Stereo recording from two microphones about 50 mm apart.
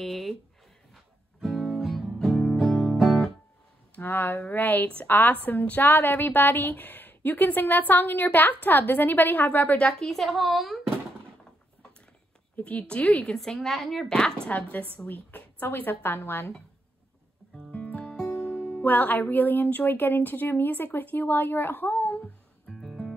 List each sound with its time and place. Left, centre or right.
0.0 s speech: centre
0.9 s music: centre
3.9 s a woman's voice: left
9.8 s a woman's voice: left
10.0 s speech: centre
12.5 s a woman's voice: left
13.4 s speech: centre
14.5 s a woman's voice: left
17.6 s music: left
18.8 s a woman's voice: left
22.7 s music: centre